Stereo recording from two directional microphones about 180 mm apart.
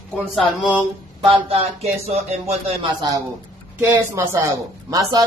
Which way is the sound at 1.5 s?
35° right (ahead or behind).